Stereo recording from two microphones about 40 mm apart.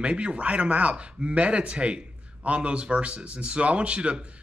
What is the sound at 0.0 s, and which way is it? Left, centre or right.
Speech, right.